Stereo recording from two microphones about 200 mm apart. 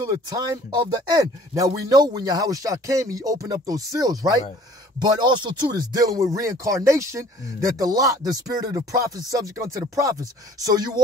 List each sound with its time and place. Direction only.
0.0 s speech: 20° right (ahead or behind)